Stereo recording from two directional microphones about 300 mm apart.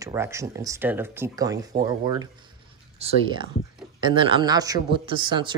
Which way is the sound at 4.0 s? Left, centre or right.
Centre.